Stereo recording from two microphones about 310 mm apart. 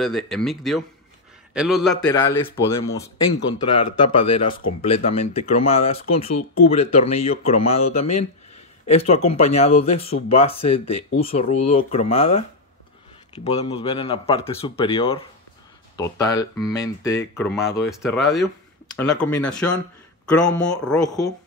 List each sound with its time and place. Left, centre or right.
0.0 s speech: centre